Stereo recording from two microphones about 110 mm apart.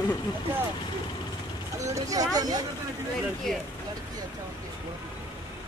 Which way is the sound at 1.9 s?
30° right (ahead or behind).